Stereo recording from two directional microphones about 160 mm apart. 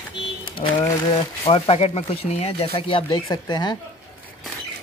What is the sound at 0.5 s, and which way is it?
Speech, 30° left (ahead or behind).